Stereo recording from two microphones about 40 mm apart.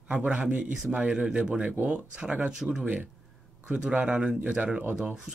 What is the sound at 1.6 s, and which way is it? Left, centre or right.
Speech, right.